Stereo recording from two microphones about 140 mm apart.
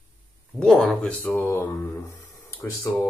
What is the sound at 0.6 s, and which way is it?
Speech, centre (ahead or behind).